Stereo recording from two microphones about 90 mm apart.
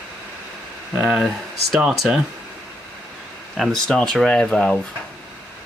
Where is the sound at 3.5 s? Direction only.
5° left (ahead or behind).